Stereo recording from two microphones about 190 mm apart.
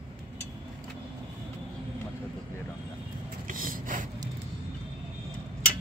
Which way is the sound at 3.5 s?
45° right (ahead or behind).